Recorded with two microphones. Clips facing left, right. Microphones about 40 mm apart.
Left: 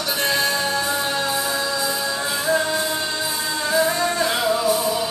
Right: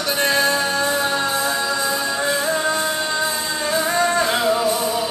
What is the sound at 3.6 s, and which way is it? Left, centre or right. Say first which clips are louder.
Music: right 1 dB; centre.